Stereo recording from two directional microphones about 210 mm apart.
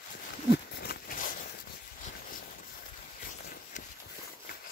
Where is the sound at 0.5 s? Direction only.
45° left (ahead or behind).